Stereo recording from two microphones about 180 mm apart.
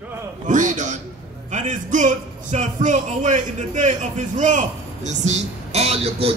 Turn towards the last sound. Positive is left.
turn(degrees=-35)  # may be behind; listen again after turning